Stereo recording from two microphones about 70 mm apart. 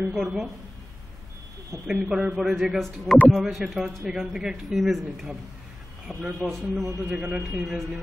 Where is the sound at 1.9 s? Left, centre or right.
Centre.